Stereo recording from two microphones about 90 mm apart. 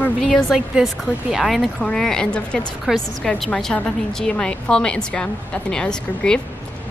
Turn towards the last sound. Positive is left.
turn(degrees=10)  # may be behind; listen again after turning